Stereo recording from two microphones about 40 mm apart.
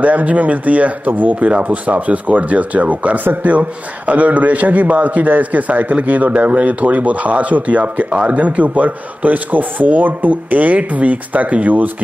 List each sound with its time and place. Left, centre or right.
0.0 s speech: right
1.5 s a man's voice: right
8.4 s speech: right